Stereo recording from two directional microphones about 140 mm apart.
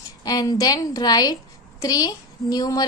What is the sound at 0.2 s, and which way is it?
A woman's voice, 25° left (ahead or behind).